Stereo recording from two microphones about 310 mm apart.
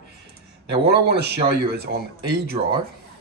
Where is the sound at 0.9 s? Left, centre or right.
Right.